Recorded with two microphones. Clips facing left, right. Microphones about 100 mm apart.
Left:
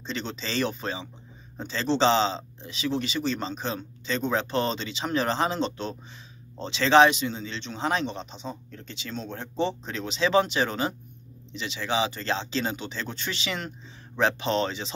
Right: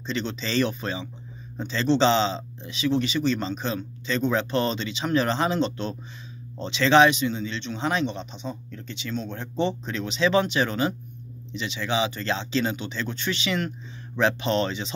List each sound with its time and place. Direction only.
0.0 s speech: 35° left (ahead or behind)